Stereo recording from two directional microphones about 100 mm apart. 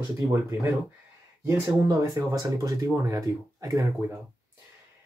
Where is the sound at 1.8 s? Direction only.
40° right (ahead or behind).